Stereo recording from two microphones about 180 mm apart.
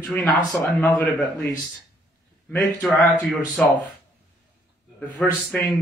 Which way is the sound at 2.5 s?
5° left (ahead or behind).